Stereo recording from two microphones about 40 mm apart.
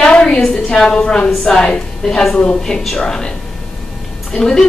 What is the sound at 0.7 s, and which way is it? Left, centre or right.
A woman's voice, centre.